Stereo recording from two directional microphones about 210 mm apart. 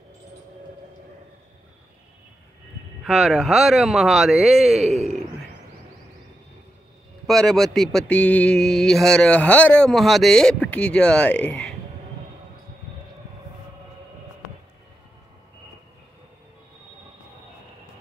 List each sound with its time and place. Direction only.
3.0 s mantra: centre (ahead or behind)
4.8 s speech: 30° right (ahead or behind)
7.2 s mantra: centre (ahead or behind)